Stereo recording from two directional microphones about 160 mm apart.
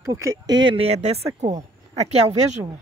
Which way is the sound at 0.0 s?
20° right (ahead or behind).